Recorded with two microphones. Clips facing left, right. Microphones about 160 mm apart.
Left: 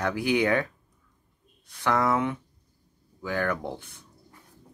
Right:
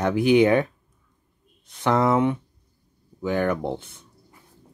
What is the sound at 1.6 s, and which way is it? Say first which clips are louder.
Speech: right 4 dB; 25° right (ahead or behind).